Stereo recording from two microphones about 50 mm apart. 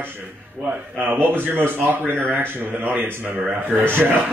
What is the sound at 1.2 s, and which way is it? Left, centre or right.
Speech, right.